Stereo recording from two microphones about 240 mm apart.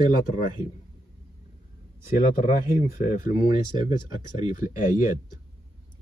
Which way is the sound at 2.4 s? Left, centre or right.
Left.